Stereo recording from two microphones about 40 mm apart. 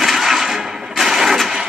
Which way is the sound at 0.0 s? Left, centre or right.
Centre.